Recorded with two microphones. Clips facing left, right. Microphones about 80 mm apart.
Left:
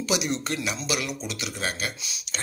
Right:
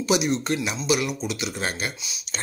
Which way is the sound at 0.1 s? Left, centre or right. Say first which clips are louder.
Right 5 dB; right.